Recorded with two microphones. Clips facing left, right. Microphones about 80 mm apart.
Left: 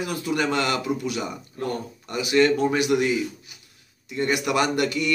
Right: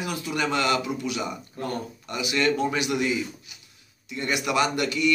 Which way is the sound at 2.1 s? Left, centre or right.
Left.